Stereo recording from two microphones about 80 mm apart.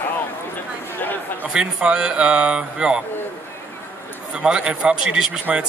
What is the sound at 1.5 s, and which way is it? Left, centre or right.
A man's voice, centre.